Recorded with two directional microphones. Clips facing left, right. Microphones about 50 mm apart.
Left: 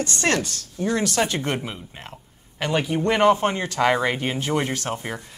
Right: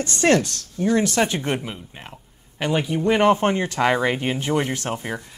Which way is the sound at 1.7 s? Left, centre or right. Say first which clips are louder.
Even; centre.